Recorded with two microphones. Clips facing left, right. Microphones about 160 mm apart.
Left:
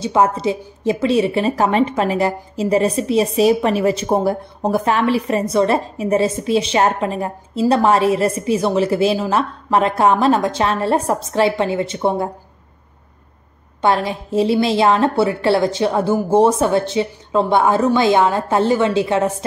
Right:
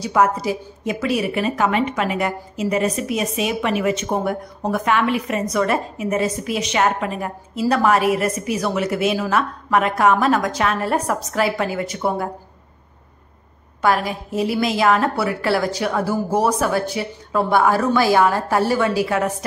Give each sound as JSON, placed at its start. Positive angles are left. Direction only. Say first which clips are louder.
{"t": 0.0, "sound": "a woman's voice", "louder": "left 2 dB", "side_deg": 25}
{"t": 13.7, "sound": "a woman's voice", "louder": "left 2 dB", "side_deg": 25}